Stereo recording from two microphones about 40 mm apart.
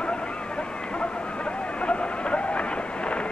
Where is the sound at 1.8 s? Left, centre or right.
Left.